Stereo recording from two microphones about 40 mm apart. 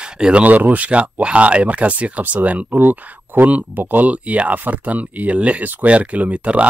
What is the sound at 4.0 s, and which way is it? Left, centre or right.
Speech, right.